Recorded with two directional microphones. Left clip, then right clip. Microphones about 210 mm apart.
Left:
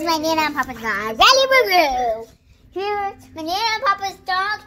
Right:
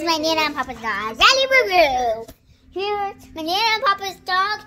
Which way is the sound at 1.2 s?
15° right (ahead or behind).